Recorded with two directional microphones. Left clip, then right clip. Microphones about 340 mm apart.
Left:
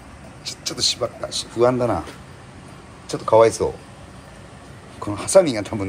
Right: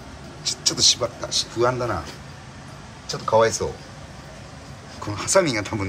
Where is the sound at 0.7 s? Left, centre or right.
Centre.